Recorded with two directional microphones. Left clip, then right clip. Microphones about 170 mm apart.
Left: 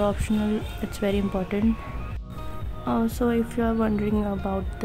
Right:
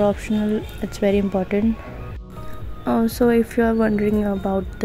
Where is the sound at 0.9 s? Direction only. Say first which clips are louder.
Right 7 dB; 15° right (ahead or behind).